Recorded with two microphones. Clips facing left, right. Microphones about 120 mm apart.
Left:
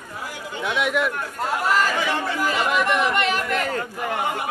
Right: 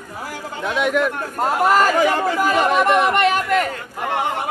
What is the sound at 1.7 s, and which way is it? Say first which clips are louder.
Speech: right 6 dB; 45° right (ahead or behind).